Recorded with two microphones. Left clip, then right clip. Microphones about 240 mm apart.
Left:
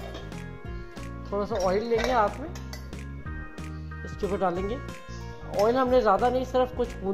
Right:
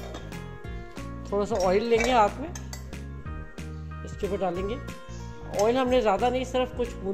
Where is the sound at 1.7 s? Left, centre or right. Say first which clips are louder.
Right 2 dB; right.